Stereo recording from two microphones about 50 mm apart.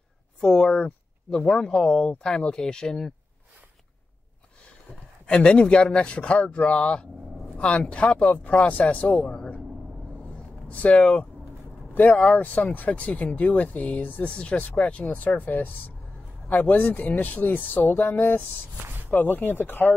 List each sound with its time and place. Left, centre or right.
0.4 s speech: centre
5.2 s speech: centre
10.7 s speech: left
14.2 s speech: left